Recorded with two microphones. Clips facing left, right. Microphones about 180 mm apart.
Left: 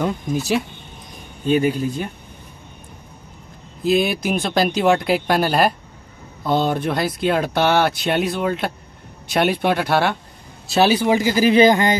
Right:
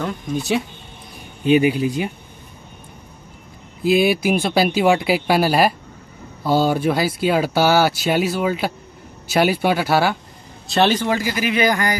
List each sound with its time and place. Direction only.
0.4 s speech: centre (ahead or behind)
1.4 s speech: 10° right (ahead or behind)
3.8 s speech: 5° right (ahead or behind); by 11.3 s 15° left (ahead or behind)
11.3 s speech: 30° left (ahead or behind)